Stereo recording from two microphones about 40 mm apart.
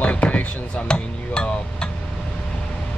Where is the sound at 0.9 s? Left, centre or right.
Left.